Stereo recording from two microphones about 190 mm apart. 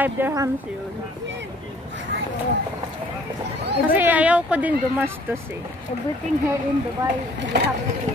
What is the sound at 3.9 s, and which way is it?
Speech, 10° right (ahead or behind).